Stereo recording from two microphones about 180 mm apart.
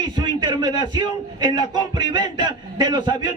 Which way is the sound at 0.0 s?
25° right (ahead or behind).